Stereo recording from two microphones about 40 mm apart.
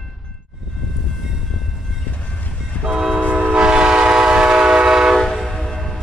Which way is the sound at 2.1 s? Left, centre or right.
Left.